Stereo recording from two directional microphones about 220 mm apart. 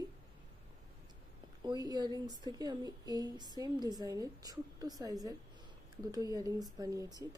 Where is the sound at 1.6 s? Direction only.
20° right (ahead or behind).